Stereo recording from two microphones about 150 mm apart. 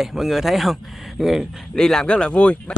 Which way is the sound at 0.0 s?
Centre (ahead or behind).